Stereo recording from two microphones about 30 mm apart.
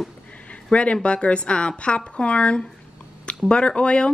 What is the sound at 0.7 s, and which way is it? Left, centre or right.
A woman's voice, left.